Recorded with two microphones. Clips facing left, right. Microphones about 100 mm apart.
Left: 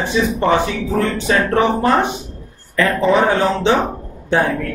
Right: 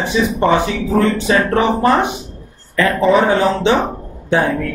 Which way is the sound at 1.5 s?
5° right (ahead or behind).